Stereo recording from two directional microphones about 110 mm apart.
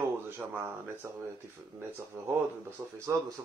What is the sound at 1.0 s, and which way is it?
Speech, 20° right (ahead or behind).